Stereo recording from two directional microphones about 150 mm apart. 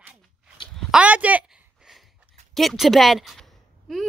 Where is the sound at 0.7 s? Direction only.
10° right (ahead or behind).